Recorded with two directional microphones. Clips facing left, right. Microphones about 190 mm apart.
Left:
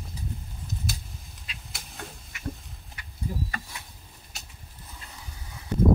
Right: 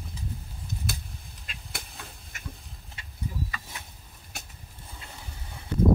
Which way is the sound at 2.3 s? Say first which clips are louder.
Left 9 dB; 45° right (ahead or behind).